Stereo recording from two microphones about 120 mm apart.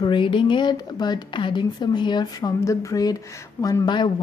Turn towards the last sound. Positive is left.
turn(degrees=40)  # may be behind; listen again after turning